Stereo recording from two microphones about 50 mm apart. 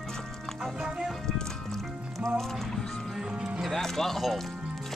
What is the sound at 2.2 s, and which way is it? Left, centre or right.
Speech, centre.